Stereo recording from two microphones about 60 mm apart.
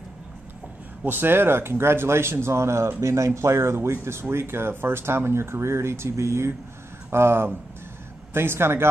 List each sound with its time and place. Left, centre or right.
1.0 s a man's voice: right